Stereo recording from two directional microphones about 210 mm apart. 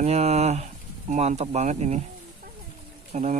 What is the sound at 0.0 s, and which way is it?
Speech, 30° right (ahead or behind).